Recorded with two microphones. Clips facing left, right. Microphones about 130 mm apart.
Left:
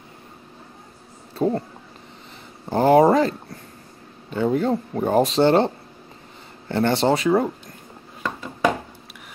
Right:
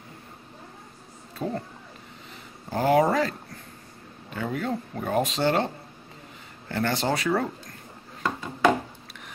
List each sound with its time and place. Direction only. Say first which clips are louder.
1.3 s a sound: left 9 dB; 35° left (ahead or behind)
2.7 s speech: left 6 dB; 30° left (ahead or behind)
6.7 s speech: left 7 dB; 25° left (ahead or behind)